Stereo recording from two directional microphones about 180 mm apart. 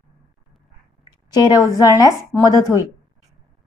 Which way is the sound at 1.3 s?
20° left (ahead or behind).